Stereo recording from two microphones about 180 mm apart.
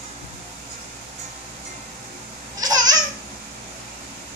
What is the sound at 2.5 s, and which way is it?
Babbling, 20° right (ahead or behind).